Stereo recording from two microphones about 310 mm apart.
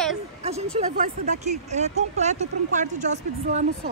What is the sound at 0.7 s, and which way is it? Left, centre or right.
Speech, right.